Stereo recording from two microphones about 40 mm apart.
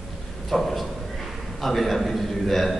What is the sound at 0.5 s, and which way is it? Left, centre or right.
A man's voice, centre.